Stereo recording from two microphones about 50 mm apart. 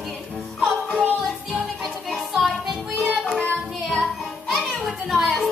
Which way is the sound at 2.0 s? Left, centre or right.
Centre.